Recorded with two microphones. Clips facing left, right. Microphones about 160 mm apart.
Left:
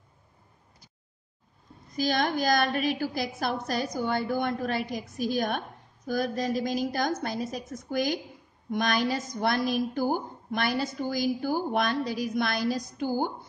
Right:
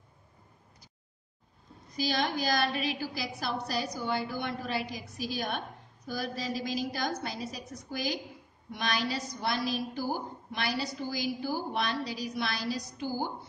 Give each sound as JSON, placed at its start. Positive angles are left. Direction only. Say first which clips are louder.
{"t": 2.0, "sound": "a woman's voice", "louder": "left 4 dB", "side_deg": 50}